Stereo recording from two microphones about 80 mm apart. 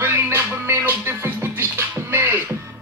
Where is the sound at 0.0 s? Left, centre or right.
Right.